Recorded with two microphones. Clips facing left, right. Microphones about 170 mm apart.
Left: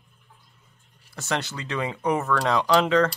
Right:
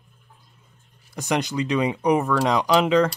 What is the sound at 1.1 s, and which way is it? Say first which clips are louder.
Speech: right 5 dB; 15° right (ahead or behind).